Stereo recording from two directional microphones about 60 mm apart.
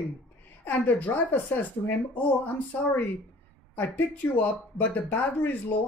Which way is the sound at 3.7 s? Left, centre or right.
Left.